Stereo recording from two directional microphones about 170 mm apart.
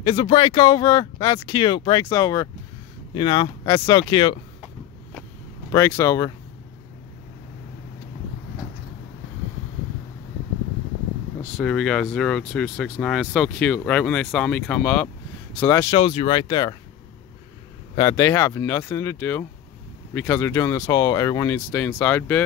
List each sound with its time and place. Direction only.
0.0 s speech: 30° left (ahead or behind)
5.7 s speech: 15° left (ahead or behind)
11.5 s speech: 5° left (ahead or behind)
15.9 s speech: 35° left (ahead or behind)
17.9 s speech: 20° left (ahead or behind)